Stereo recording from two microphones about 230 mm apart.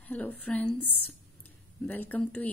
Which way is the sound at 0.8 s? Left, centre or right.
Left.